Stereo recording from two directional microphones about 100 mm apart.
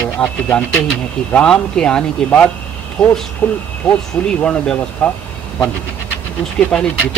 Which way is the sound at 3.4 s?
20° left (ahead or behind).